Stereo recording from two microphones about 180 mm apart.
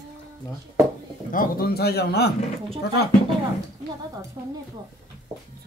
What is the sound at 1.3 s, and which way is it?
A man's voice, 55° left (ahead or behind).